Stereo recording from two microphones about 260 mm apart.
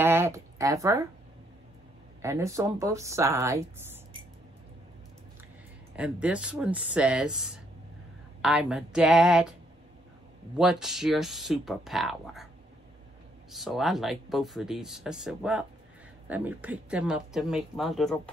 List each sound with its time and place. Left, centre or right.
0.0 s speech: centre
2.2 s speech: centre
5.9 s speech: centre
10.6 s speech: centre
13.5 s speech: centre